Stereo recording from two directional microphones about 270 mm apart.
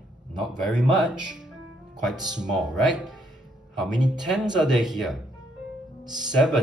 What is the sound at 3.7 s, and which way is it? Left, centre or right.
Speech, centre.